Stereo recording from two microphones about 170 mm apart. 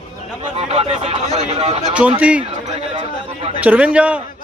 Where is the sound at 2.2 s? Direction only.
5° right (ahead or behind).